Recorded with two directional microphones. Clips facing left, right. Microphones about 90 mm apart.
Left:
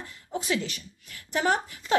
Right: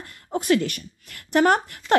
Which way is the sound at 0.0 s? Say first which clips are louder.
Right 5 dB; 55° right (ahead or behind).